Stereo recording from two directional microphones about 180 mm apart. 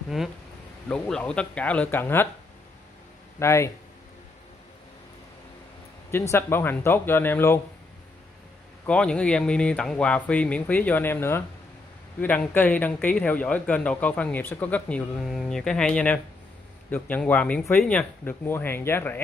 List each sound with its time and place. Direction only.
0.8 s speech: 5° left (ahead or behind)
3.3 s speech: 15° left (ahead or behind)
6.1 s speech: 15° left (ahead or behind)
8.8 s speech: 5° left (ahead or behind)